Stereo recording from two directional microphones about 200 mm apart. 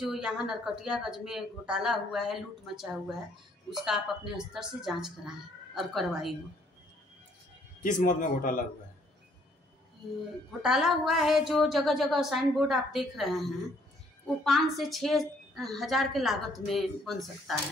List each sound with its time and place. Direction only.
0.0 s a woman's voice: 5° right (ahead or behind)
7.8 s speech: 40° left (ahead or behind)
10.6 s a woman's voice: centre (ahead or behind)